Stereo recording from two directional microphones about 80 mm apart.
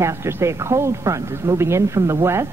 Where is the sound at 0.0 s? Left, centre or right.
Right.